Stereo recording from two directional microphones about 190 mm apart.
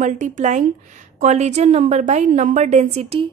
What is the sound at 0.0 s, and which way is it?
A woman's voice, 40° right (ahead or behind).